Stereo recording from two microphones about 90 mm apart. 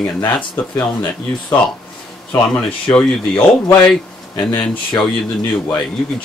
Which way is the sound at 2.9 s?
15° left (ahead or behind).